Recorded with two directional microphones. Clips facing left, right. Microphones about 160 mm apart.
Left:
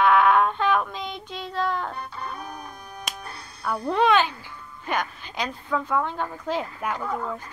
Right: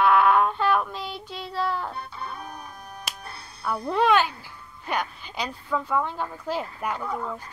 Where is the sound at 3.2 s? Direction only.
30° right (ahead or behind).